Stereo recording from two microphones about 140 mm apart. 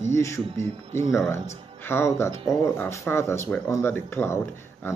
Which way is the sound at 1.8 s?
15° left (ahead or behind).